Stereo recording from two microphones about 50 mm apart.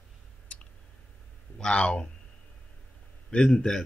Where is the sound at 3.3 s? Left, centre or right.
Centre.